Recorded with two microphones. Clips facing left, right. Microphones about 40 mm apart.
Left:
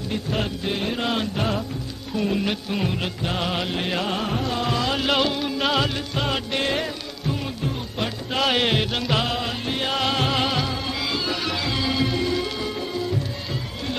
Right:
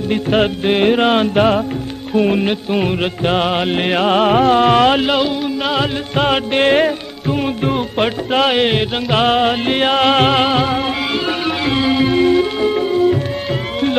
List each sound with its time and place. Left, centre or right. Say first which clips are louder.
0.1 s music: right 11 dB; right
5.0 s music: right 6 dB; centre
6.1 s music: right 12 dB; right
8.5 s music: right 3 dB; right
9.1 s music: right 14 dB; right